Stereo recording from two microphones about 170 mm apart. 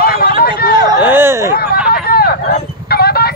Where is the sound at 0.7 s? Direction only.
25° right (ahead or behind).